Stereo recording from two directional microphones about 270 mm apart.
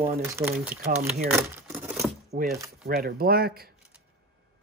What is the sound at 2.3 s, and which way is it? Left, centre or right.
Speech, right.